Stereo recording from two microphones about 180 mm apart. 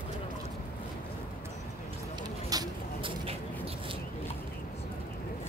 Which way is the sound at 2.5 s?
25° right (ahead or behind).